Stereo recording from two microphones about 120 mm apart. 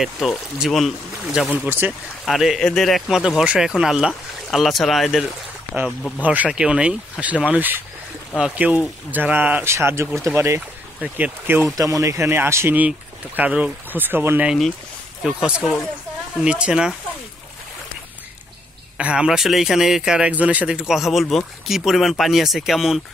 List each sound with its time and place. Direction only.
0.0 s a man's voice: centre (ahead or behind)
1.5 s speech: 15° right (ahead or behind)
2.2 s a man's voice: centre (ahead or behind)
6.2 s speech: 10° right (ahead or behind)
11.0 s speech: 10° right (ahead or behind)
11.8 s speech: 25° right (ahead or behind)
15.2 s a man's voice: 5° right (ahead or behind)
18.9 s a man's voice: 10° right (ahead or behind)